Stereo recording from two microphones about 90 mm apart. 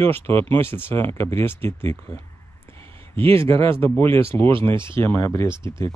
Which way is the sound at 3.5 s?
90° right.